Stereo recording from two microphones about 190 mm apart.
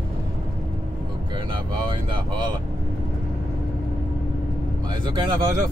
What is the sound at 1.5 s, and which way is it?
Speech, 25° right (ahead or behind).